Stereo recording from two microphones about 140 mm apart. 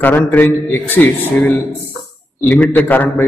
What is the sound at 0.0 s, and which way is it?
A man's voice, 15° left (ahead or behind).